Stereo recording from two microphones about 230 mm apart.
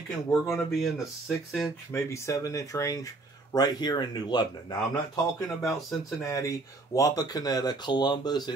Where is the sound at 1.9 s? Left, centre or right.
Centre.